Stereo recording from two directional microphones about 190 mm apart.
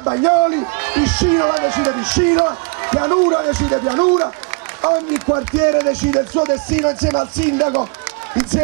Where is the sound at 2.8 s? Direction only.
25° right (ahead or behind).